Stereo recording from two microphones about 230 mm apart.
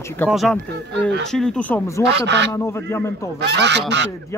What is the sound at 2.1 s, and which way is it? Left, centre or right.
Goose, right.